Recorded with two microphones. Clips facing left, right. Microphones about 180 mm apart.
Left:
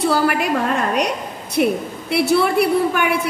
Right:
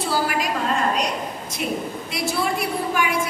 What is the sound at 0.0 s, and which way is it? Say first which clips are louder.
Speech: left 6 dB; 60° left (ahead or behind).